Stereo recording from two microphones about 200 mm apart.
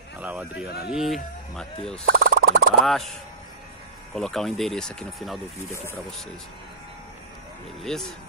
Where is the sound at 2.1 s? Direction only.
50° right (ahead or behind).